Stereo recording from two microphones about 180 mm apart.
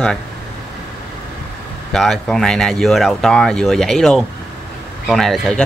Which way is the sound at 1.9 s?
Centre (ahead or behind).